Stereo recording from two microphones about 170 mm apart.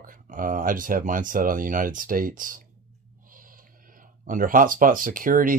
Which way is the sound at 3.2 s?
55° right (ahead or behind).